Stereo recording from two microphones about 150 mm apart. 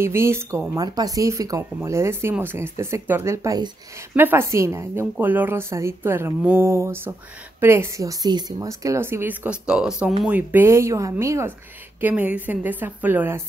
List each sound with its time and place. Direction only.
0.0 s speech: 15° right (ahead or behind)
4.1 s speech: 15° right (ahead or behind)